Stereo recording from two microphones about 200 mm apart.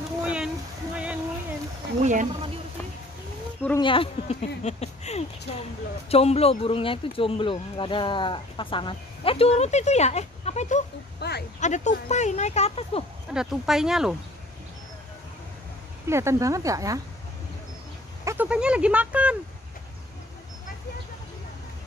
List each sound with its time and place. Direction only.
0.2 s a sound: 5° right (ahead or behind)
2.0 s speech: 35° right (ahead or behind)
3.8 s speech: 25° left (ahead or behind)
11.1 s a sound: 55° left (ahead or behind)
11.6 s speech: 35° left (ahead or behind)
13.3 s speech: 5° right (ahead or behind)
16.1 s speech: 15° right (ahead or behind)
18.2 s speech: 10° right (ahead or behind)